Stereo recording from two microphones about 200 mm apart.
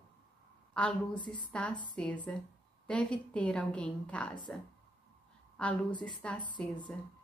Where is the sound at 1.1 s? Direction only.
25° left (ahead or behind).